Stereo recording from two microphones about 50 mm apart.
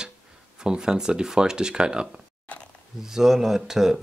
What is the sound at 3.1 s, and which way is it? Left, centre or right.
Speech, centre.